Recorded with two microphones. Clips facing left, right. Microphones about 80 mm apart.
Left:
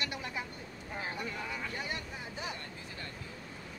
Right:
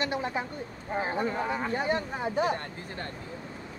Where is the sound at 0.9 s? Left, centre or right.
Right.